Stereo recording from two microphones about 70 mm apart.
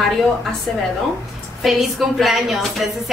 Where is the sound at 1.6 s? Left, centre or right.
Centre.